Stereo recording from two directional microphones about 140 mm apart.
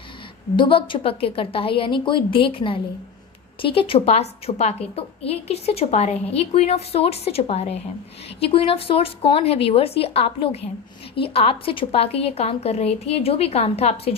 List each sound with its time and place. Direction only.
0.6 s a woman's voice: 35° left (ahead or behind)